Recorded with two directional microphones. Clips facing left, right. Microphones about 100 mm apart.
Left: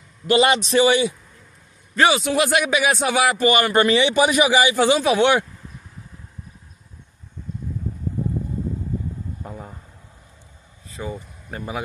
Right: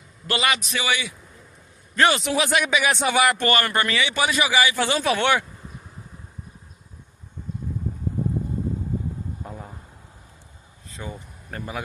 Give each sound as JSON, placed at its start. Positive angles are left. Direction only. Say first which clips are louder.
{"t": 0.3, "sound": "a man's voice", "louder": "left 8 dB", "side_deg": 30}
{"t": 2.0, "sound": "a man's voice", "louder": "left 2 dB", "side_deg": 5}
{"t": 9.4, "sound": "a sound", "louder": "left 2 dB", "side_deg": 0}
{"t": 10.9, "sound": "speech", "louder": "left 5 dB", "side_deg": 0}